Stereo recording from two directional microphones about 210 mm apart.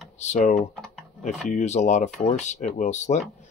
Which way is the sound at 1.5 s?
35° left (ahead or behind).